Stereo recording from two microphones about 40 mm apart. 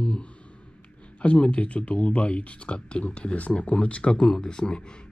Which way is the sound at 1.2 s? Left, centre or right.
Left.